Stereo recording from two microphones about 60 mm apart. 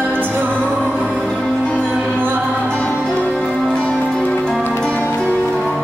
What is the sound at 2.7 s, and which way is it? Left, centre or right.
Music, left.